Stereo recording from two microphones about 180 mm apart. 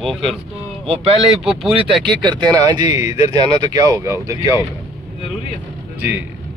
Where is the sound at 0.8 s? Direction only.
30° right (ahead or behind).